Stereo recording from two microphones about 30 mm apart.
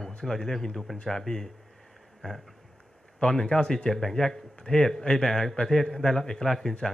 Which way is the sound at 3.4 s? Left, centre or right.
Left.